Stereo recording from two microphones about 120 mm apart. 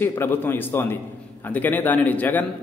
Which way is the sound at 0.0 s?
20° left (ahead or behind).